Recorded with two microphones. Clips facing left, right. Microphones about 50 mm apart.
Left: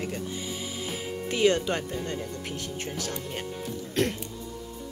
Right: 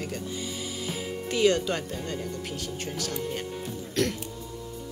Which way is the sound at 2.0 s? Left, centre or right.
Centre.